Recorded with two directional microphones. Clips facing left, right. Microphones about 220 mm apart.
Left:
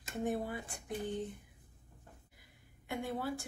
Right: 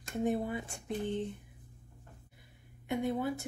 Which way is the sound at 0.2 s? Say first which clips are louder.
Right 4 dB; 20° right (ahead or behind).